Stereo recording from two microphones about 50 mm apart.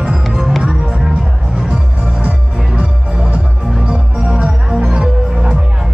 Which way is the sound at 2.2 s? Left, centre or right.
Right.